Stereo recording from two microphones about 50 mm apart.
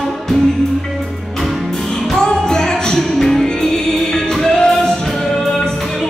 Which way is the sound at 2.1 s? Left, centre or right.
Centre.